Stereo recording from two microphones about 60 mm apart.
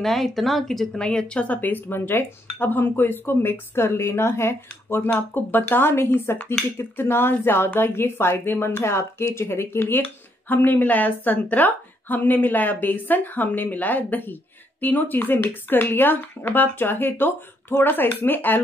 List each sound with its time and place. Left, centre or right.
0.0 s a woman's voice: centre; by 18.6 s left